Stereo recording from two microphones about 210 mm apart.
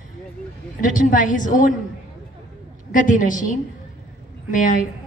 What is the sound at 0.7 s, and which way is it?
Speech, 40° left (ahead or behind).